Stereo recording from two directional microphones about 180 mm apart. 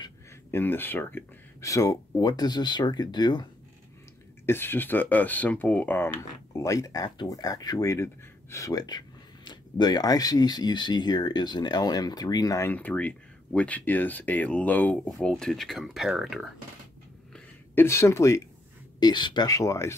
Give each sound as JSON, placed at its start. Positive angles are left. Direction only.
{"t": 0.5, "sound": "speech", "side_deg": 10}
{"t": 4.5, "sound": "speech", "side_deg": 10}
{"t": 17.3, "sound": "a sound", "side_deg": 15}
{"t": 18.9, "sound": "speech", "side_deg": 25}